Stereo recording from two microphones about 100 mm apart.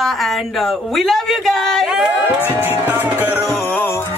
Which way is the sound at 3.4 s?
25° left (ahead or behind).